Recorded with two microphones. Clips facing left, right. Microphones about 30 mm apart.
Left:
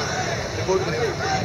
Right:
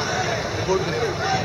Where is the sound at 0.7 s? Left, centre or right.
Centre.